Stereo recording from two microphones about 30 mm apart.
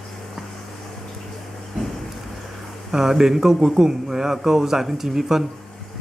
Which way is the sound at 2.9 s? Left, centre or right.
Centre.